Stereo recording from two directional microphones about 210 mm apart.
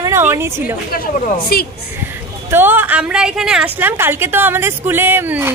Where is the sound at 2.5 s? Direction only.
10° right (ahead or behind).